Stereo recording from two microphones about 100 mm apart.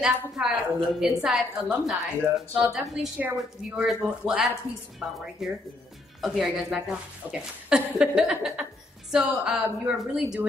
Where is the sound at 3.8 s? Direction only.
5° right (ahead or behind).